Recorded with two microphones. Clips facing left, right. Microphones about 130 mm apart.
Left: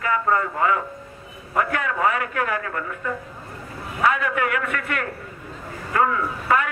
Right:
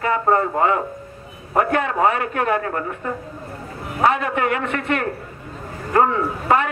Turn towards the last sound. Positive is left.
turn(degrees=-30)  # may be behind; listen again after turning